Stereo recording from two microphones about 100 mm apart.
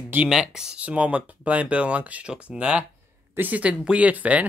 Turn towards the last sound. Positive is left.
turn(degrees=-15)  # may be behind; listen again after turning